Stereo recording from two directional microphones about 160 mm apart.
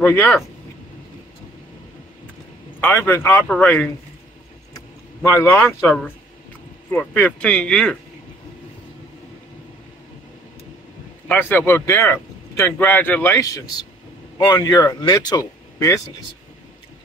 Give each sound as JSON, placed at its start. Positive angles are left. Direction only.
{"t": 0.0, "sound": "speech", "side_deg": 15}
{"t": 2.8, "sound": "speech", "side_deg": 10}
{"t": 5.4, "sound": "speech", "side_deg": 15}
{"t": 11.2, "sound": "speech", "side_deg": 10}